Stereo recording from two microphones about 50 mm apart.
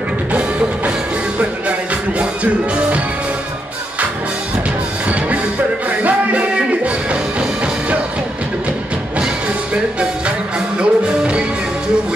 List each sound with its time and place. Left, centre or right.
0.3 s music: right
5.9 s music: right
10.8 s music: right